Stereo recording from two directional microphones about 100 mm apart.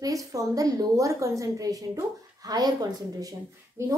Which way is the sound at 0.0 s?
35° right (ahead or behind).